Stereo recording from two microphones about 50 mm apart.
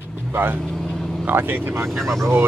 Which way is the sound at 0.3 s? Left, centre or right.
Right.